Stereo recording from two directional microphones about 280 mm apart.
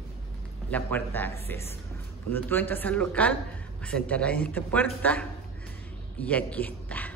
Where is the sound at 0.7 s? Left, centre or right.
Centre.